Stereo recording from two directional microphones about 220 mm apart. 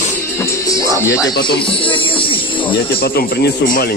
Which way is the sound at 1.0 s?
15° left (ahead or behind).